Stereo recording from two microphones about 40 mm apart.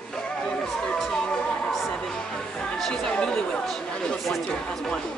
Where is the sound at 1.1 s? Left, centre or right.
Left.